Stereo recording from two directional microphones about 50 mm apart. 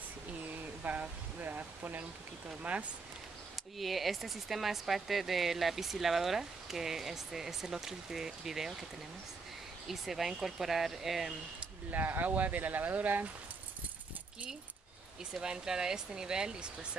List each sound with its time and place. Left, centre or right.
0.5 s a sound: right
2.6 s speech: right
3.7 s speech: centre
9.8 s speech: centre
11.9 s speech: right
15.4 s speech: centre